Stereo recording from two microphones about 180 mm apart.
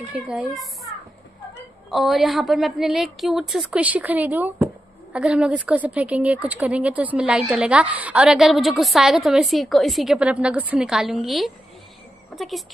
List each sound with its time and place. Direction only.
0.1 s a woman's voice: 5° right (ahead or behind)
1.9 s a woman's voice: centre (ahead or behind)